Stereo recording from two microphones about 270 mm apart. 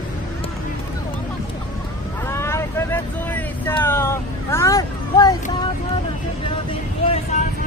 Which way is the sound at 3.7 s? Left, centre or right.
Centre.